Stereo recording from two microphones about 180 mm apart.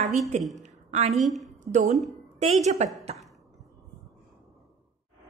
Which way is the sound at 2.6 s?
40° right (ahead or behind).